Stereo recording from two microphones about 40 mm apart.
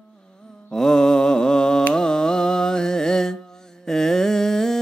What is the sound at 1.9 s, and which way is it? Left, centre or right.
Music, centre.